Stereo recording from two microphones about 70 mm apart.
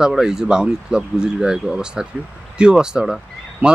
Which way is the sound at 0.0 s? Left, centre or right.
Centre.